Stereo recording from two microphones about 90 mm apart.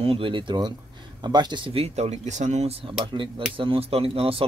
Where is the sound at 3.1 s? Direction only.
65° right (ahead or behind); by 4.4 s 90° right.